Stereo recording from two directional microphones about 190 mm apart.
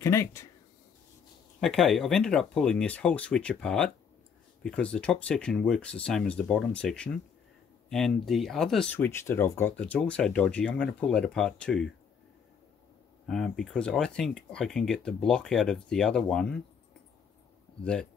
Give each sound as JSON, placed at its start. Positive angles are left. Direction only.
{"t": 0.0, "sound": "speech", "side_deg": 15}
{"t": 1.6, "sound": "speech", "side_deg": 0}
{"t": 13.3, "sound": "speech", "side_deg": 0}